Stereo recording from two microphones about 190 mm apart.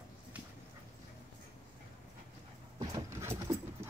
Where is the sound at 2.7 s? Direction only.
15° right (ahead or behind).